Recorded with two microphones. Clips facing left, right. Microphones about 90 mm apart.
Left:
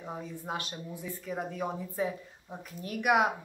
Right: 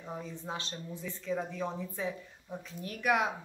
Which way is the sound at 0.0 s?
15° left (ahead or behind).